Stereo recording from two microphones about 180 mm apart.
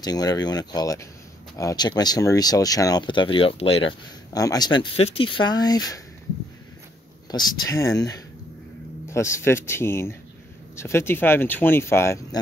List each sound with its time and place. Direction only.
0.0 s speech: 20° left (ahead or behind)
4.3 s speech: 20° left (ahead or behind)
7.2 s speech: 20° left (ahead or behind)